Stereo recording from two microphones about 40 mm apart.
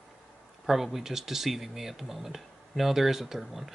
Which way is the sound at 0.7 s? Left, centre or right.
Centre.